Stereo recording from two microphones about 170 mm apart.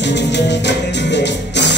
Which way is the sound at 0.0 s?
90° left.